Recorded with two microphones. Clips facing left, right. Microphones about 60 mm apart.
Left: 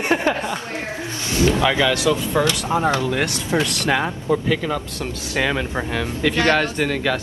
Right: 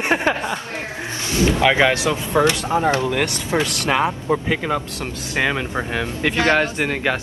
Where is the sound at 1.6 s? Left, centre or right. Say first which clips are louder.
Right 2 dB; right.